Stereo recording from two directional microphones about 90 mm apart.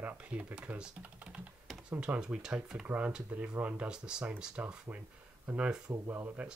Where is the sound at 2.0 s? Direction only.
10° right (ahead or behind).